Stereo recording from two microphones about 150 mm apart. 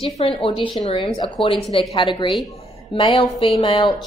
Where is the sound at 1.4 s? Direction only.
35° left (ahead or behind).